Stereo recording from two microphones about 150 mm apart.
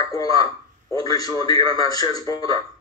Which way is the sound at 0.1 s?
25° left (ahead or behind).